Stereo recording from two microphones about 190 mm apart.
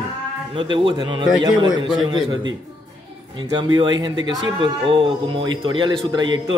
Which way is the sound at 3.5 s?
25° right (ahead or behind).